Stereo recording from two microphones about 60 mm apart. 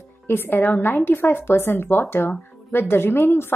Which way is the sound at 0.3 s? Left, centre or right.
Left.